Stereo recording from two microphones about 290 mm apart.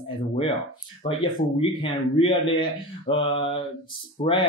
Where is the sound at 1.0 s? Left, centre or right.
Centre.